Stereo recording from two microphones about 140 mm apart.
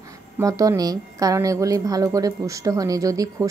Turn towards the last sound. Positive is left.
turn(degrees=-25)  # may be behind; listen again after turning